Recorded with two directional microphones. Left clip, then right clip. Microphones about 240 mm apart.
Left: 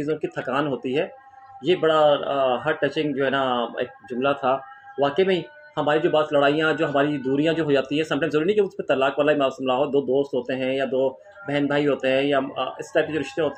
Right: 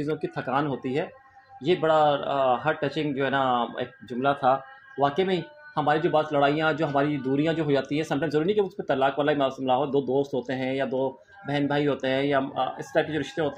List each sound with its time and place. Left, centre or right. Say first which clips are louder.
0.0 s speech: left 3 dB; centre